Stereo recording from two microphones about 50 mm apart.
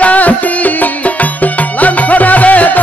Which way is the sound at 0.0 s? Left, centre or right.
Left.